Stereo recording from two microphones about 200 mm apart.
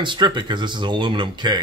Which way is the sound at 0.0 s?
25° right (ahead or behind).